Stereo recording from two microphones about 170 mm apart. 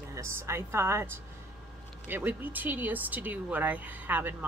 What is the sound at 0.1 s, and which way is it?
Speech, 15° right (ahead or behind).